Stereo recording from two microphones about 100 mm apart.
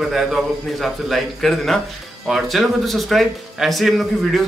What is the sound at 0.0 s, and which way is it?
Speech, 5° right (ahead or behind).